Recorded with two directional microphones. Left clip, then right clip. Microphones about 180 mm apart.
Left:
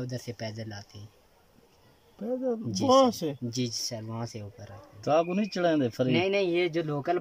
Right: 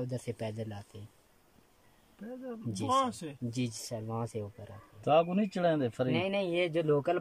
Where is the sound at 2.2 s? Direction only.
30° left (ahead or behind).